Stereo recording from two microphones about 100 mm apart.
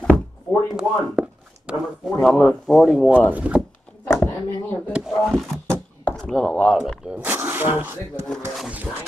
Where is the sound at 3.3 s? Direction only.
15° right (ahead or behind).